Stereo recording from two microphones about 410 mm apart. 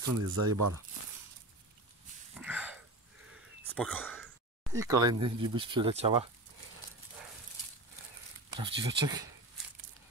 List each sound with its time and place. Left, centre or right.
0.0 s speech: right
2.3 s a sound: centre
3.7 s speech: centre
4.7 s speech: centre
8.5 s speech: centre